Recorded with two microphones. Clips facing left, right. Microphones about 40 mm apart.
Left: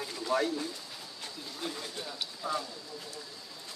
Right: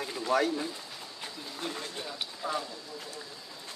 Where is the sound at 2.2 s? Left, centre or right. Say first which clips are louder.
Right 1 dB; right.